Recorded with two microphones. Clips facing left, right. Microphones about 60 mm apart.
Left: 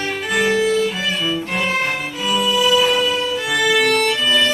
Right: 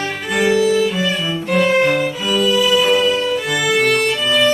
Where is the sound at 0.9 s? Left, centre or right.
Centre.